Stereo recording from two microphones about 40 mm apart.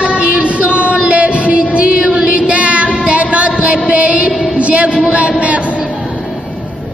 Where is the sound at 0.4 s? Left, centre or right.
Right.